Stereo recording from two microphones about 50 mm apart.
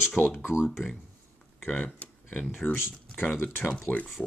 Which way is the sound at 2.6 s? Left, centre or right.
Left.